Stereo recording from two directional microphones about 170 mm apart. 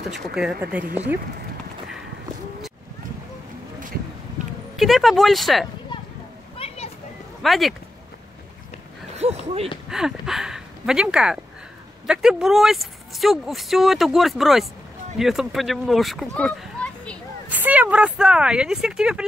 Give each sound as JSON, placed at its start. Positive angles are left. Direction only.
{"t": 0.0, "sound": "speech", "side_deg": -5}
{"t": 4.7, "sound": "speech", "side_deg": 0}
{"t": 6.6, "sound": "children playing", "side_deg": 35}
{"t": 7.4, "sound": "speech", "side_deg": 0}
{"t": 9.2, "sound": "speech", "side_deg": -35}
{"t": 9.8, "sound": "speech", "side_deg": -5}
{"t": 17.5, "sound": "speech", "side_deg": -10}